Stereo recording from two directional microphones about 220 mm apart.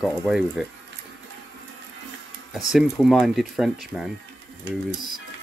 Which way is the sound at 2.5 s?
Centre (ahead or behind).